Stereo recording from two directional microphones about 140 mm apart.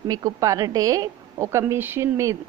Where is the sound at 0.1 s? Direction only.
25° right (ahead or behind).